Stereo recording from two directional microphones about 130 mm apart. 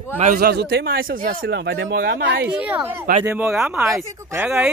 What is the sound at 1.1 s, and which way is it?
Speech, 90° right.